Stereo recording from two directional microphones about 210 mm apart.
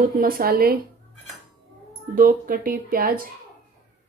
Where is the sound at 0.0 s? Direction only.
45° right (ahead or behind).